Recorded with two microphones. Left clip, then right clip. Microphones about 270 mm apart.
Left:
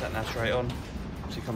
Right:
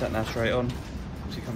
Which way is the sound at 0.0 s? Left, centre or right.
Centre.